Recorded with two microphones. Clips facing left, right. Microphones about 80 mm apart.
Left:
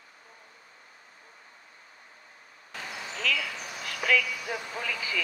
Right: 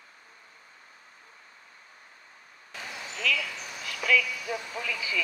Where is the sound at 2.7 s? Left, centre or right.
Left.